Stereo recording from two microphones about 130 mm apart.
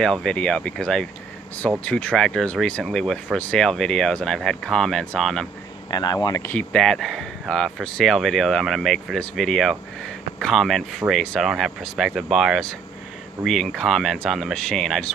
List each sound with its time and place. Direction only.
0.0 s speech: 5° left (ahead or behind)
5.9 s speech: 30° left (ahead or behind)
6.5 s speech: 5° left (ahead or behind)